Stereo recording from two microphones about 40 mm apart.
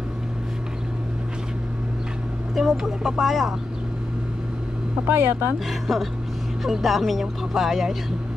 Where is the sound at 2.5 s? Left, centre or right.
Centre.